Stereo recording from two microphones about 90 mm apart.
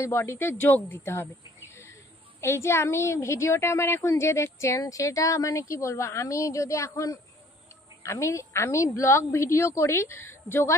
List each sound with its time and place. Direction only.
0.2 s speech: 25° left (ahead or behind)
2.4 s a woman's voice: 30° left (ahead or behind)